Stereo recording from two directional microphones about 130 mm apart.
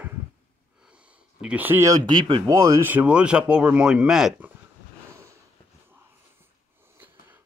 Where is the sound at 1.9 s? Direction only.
35° right (ahead or behind).